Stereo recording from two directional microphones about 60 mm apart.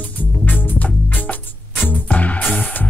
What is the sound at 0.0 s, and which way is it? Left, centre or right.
Music, left.